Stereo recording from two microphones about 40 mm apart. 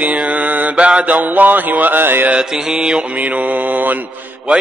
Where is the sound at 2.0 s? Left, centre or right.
Right.